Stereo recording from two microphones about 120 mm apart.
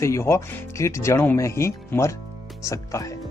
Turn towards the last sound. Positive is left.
turn(degrees=25)  # may be behind; listen again after turning